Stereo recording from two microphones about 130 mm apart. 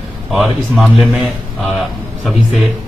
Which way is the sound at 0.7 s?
Centre (ahead or behind).